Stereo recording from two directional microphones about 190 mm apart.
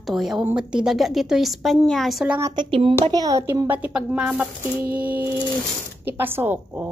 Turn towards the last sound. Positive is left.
turn(degrees=-10)  # may be behind; listen again after turning